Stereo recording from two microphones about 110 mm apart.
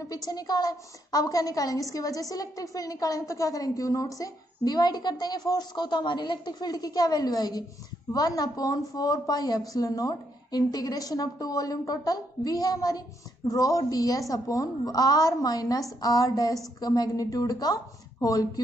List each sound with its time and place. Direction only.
0.0 s a woman's voice: 35° left (ahead or behind)